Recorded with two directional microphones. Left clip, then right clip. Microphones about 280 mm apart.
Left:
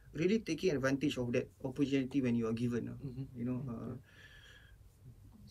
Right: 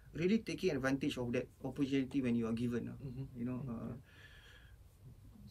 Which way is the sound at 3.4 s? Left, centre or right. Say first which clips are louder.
Left 2 dB; centre.